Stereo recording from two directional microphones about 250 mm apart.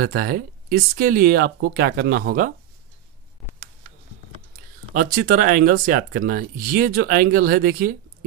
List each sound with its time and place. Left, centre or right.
0.0 s speech: right
4.9 s speech: right